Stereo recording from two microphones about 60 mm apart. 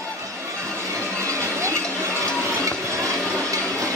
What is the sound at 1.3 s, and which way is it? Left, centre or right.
Music, right.